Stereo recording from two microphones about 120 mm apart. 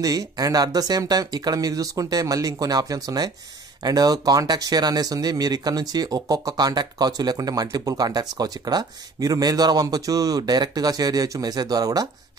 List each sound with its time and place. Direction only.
0.0 s speech: 30° right (ahead or behind)